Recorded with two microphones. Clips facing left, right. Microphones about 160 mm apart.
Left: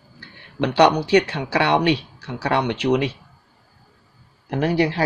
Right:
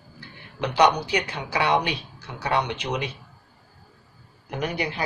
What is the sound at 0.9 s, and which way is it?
Speech, 30° left (ahead or behind).